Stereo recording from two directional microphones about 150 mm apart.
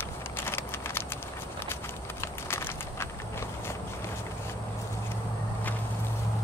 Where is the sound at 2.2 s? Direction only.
15° left (ahead or behind).